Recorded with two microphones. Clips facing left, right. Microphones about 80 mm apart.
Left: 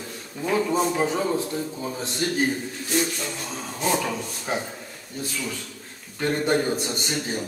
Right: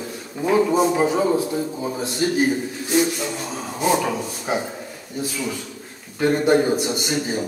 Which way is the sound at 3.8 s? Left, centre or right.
Centre.